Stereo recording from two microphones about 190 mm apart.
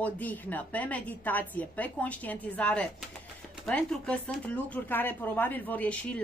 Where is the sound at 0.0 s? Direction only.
10° left (ahead or behind).